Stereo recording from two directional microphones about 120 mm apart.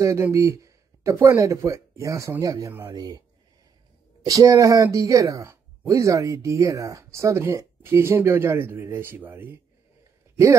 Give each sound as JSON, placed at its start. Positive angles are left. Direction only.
{"t": 0.0, "sound": "speech", "side_deg": -25}
{"t": 4.3, "sound": "speech", "side_deg": -30}